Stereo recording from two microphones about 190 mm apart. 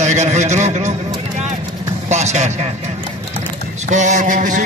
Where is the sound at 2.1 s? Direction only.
35° right (ahead or behind).